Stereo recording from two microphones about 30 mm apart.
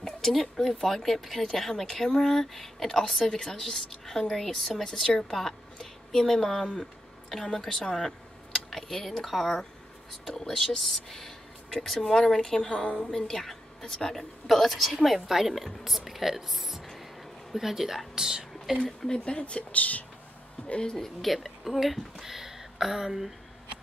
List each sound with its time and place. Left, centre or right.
0.0 s a woman's voice: centre
8.6 s a woman's voice: centre
12.6 s a woman's voice: left
13.4 s a woman's voice: centre
16.9 s a sound: centre
17.6 s a woman's voice: centre
19.0 s speech: left
19.7 s speech: left
20.7 s speech: left
21.2 s a woman's voice: centre
22.2 s speech: centre